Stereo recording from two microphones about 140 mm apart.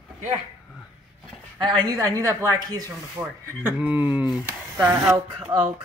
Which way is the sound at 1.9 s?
20° right (ahead or behind).